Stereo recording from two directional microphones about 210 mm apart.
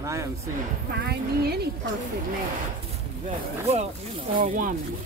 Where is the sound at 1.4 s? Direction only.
50° right (ahead or behind).